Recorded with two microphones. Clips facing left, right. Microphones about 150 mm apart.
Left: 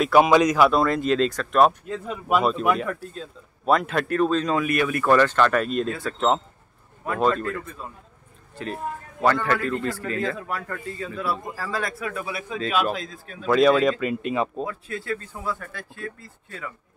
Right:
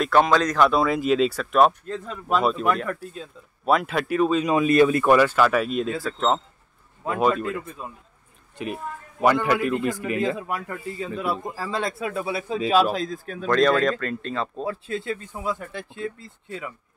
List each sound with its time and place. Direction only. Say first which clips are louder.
0.0 s speech: left 2 dB; 10° left (ahead or behind)
0.7 s speech: even; 5° right (ahead or behind)
4.6 s speech: right 6 dB; 25° right (ahead or behind)
5.0 s speech: right 1 dB; 10° right (ahead or behind)
7.2 s a man's voice: even; 10° right (ahead or behind)
9.2 s a man's voice: right 2 dB; 15° right (ahead or behind)
12.9 s speech: right 5 dB; 40° right (ahead or behind)
13.5 s speech: left 2 dB; 5° left (ahead or behind)
14.6 s speech: right 2 dB; 25° right (ahead or behind)